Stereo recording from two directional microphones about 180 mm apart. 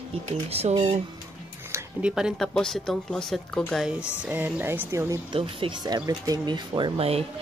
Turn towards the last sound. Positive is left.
turn(degrees=-30)  # may be behind; listen again after turning